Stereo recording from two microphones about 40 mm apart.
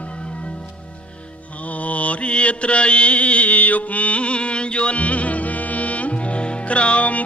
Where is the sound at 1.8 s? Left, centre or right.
Left.